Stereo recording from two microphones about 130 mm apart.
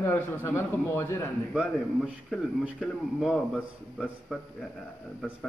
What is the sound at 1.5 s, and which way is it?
A man's voice, 10° right (ahead or behind).